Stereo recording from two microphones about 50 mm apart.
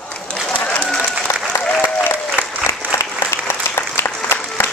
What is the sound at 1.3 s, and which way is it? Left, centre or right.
Applause, left.